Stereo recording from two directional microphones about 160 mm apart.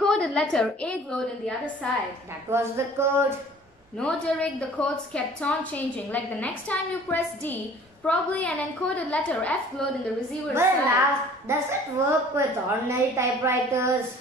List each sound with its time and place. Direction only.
0.0 s a woman's voice: 5° left (ahead or behind)
2.5 s a woman's voice: 15° right (ahead or behind)
4.0 s a woman's voice: 5° left (ahead or behind)
10.5 s a woman's voice: 15° right (ahead or behind)